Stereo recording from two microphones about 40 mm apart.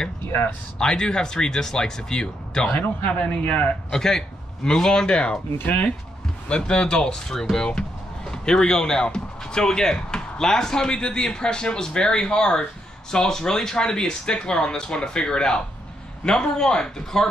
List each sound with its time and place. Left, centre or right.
0.7 s speech: centre
3.1 s speech: left
3.9 s speech: centre
5.6 s speech: left
6.5 s speech: left